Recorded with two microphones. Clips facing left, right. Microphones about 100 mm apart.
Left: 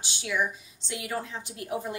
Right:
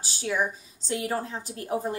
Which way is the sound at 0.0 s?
40° right (ahead or behind).